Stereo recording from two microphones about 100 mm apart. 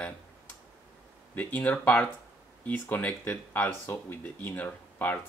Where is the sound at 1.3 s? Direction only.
15° left (ahead or behind).